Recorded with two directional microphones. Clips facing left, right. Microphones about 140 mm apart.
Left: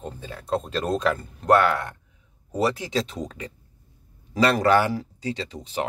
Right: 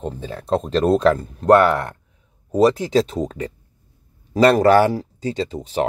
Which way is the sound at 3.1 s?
35° right (ahead or behind).